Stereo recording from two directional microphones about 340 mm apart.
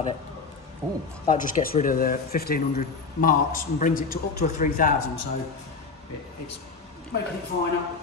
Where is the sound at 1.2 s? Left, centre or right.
Left.